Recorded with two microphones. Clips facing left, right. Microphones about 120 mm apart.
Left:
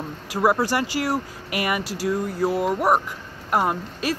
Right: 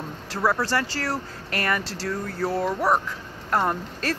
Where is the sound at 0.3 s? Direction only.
15° left (ahead or behind).